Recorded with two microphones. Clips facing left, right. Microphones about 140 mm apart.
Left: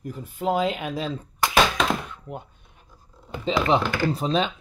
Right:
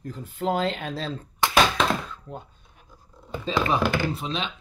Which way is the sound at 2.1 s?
15° left (ahead or behind).